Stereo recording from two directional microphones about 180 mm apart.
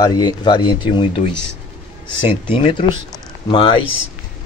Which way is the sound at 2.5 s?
30° left (ahead or behind).